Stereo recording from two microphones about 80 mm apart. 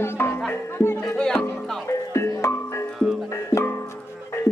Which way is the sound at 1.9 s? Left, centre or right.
Left.